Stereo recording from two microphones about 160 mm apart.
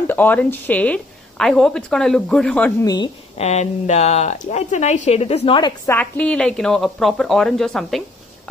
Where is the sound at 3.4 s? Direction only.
45° left (ahead or behind).